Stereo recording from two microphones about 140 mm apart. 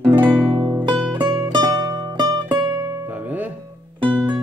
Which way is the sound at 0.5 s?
25° right (ahead or behind).